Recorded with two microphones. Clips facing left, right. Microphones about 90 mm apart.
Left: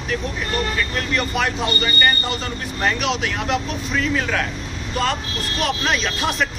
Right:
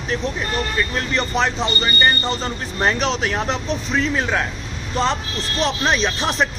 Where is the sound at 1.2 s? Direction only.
30° right (ahead or behind).